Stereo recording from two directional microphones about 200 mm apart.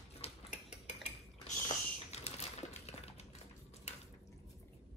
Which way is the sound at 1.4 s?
30° left (ahead or behind).